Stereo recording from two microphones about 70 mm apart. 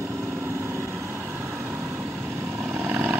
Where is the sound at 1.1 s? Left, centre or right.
Right.